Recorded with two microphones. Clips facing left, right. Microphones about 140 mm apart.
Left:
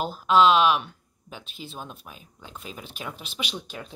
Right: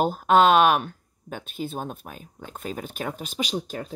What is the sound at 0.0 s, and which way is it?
Speech, 50° right (ahead or behind).